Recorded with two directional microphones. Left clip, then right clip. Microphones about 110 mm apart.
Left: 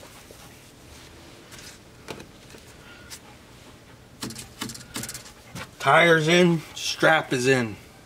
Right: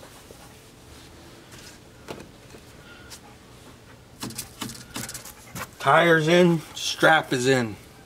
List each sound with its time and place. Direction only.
1.6 s a sound: centre (ahead or behind)
4.2 s typewriter: centre (ahead or behind)
5.8 s speech: 5° right (ahead or behind)